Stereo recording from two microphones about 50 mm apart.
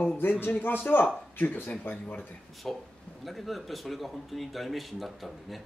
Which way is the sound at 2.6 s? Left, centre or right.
Centre.